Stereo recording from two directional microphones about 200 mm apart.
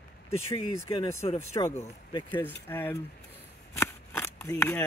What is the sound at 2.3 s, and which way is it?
Speech, 10° left (ahead or behind).